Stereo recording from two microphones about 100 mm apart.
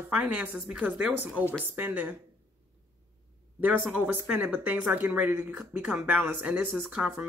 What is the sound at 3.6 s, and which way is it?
A woman's voice, 15° right (ahead or behind).